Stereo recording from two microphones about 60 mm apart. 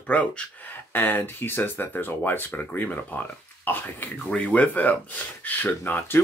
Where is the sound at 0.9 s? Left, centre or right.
Left.